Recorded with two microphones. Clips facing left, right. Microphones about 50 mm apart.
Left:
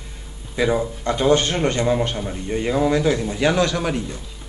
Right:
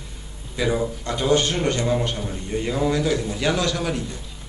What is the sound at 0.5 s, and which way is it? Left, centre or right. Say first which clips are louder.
A man's voice: left 3 dB; centre.